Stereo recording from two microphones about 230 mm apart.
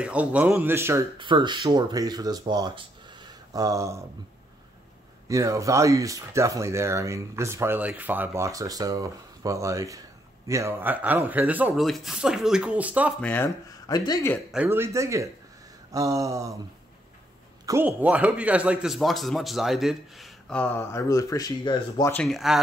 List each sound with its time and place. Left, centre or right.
0.0 s speech: centre
1.1 s speech: right
5.3 s speech: centre
13.2 s speech: centre
14.5 s speech: centre
17.6 s speech: centre
22.1 s speech: centre